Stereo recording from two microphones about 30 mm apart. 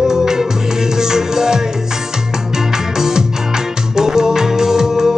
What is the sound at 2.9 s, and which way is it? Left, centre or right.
Music, centre.